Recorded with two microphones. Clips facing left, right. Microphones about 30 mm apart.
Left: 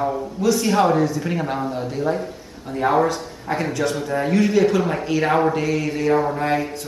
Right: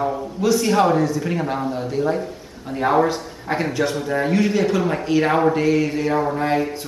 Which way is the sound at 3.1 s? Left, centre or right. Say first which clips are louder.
Right 1 dB; centre.